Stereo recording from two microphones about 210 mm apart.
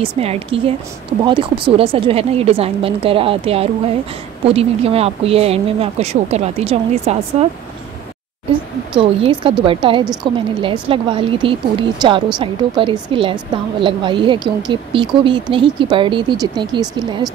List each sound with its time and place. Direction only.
0.0 s a woman's voice: 25° right (ahead or behind)
8.9 s a woman's voice: 25° right (ahead or behind)